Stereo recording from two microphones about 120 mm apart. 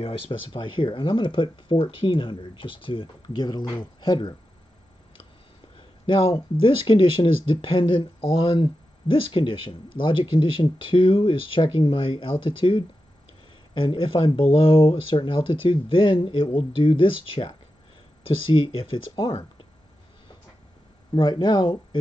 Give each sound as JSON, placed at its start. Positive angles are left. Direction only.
{"t": 0.0, "sound": "speech", "side_deg": 45}
{"t": 3.6, "sound": "speech", "side_deg": 25}
{"t": 4.0, "sound": "speech", "side_deg": 40}
{"t": 5.8, "sound": "a sound", "side_deg": 45}
{"t": 6.6, "sound": "speech", "side_deg": 45}
{"t": 21.1, "sound": "speech", "side_deg": 35}